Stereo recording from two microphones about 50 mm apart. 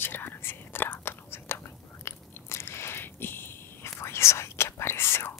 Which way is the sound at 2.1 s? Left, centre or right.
Left.